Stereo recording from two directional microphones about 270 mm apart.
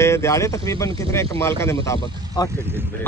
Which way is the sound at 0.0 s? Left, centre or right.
Centre.